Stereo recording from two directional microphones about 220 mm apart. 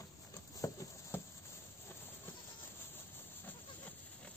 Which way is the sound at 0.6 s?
15° left (ahead or behind).